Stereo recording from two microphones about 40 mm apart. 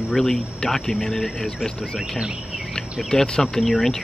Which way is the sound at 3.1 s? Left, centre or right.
Centre.